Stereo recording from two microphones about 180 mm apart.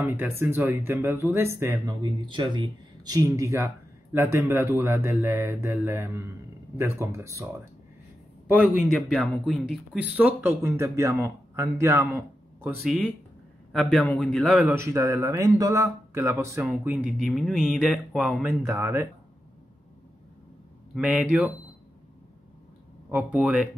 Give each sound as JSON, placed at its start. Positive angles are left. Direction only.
{"t": 0.0, "sound": "speech", "side_deg": -10}
{"t": 2.0, "sound": "speech", "side_deg": -25}
{"t": 8.6, "sound": "a man's voice", "side_deg": 0}
{"t": 14.7, "sound": "speech", "side_deg": -15}
{"t": 18.5, "sound": "speech", "side_deg": -15}
{"t": 20.9, "sound": "speech", "side_deg": -5}
{"t": 23.0, "sound": "speech", "side_deg": -10}